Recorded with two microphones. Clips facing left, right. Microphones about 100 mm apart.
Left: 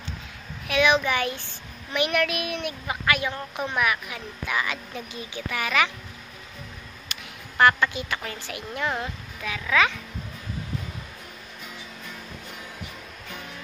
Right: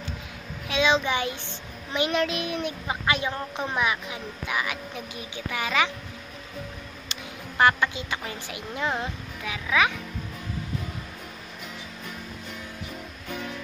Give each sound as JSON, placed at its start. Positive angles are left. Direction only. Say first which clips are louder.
{"t": 0.7, "sound": "a child's voice", "louder": "left 2 dB", "side_deg": -20}
{"t": 7.1, "sound": "a woman's voice", "louder": "right 3 dB", "side_deg": -15}